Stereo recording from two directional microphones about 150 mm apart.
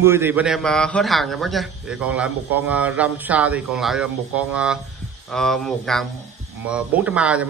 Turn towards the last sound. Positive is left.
turn(degrees=-10)  # may be behind; listen again after turning